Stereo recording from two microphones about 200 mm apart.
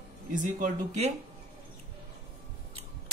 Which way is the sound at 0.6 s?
35° right (ahead or behind).